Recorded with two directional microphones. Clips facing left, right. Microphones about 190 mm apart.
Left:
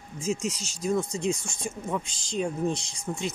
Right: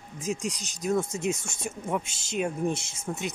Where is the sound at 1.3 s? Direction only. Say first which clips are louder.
Left 1 dB; 25° right (ahead or behind).